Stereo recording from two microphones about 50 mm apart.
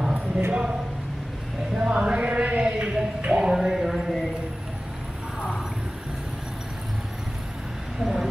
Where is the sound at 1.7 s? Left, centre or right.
Right; by 4.2 s centre.